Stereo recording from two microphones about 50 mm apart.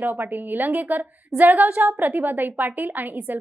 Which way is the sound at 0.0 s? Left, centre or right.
Right.